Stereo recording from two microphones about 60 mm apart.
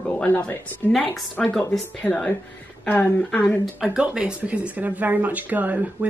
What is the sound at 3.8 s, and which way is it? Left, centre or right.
Speech, centre.